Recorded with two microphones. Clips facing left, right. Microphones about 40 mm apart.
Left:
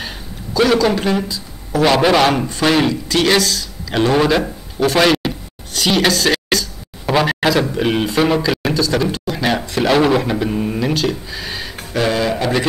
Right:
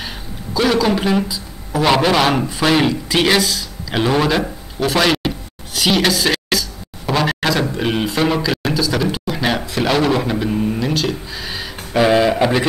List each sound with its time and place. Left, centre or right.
0.6 s a man's voice: centre
5.7 s a sound: centre
7.7 s speech: centre
11.9 s speech: centre